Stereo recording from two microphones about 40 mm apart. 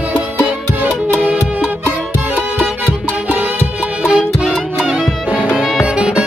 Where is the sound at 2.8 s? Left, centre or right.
Right.